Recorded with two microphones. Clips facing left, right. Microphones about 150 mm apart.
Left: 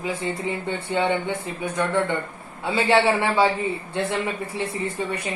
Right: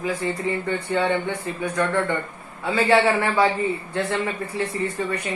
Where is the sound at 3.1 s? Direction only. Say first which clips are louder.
Even; 25° left (ahead or behind).